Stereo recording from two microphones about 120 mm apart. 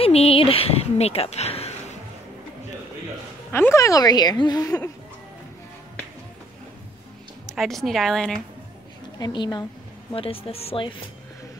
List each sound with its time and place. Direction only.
0.0 s a woman's voice: 55° left (ahead or behind)
3.5 s a woman's voice: 25° left (ahead or behind)
7.5 s a woman's voice: centre (ahead or behind)
9.2 s a woman's voice: 35° left (ahead or behind)
10.1 s speech: 50° left (ahead or behind)